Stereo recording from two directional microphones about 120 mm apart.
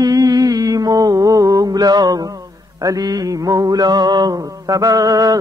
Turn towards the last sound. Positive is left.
turn(degrees=-35)  # may be behind; listen again after turning